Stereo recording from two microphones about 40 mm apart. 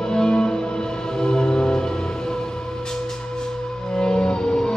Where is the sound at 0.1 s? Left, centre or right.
Left.